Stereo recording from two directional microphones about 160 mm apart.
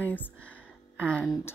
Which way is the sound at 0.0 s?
10° left (ahead or behind).